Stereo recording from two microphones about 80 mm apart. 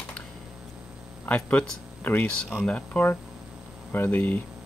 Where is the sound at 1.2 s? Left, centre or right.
Centre.